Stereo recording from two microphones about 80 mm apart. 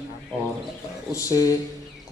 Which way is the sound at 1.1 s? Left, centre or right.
Left.